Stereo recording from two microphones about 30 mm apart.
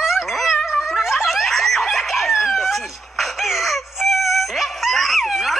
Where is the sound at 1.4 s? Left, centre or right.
Centre.